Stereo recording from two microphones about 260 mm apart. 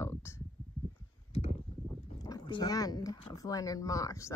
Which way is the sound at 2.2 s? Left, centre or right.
Centre.